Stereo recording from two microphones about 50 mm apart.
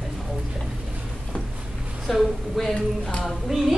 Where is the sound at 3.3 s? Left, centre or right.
Centre.